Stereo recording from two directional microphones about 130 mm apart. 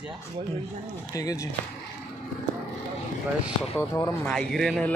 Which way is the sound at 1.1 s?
25° left (ahead or behind).